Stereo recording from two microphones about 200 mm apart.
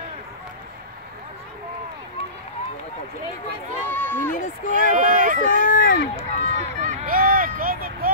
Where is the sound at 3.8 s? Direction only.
10° left (ahead or behind).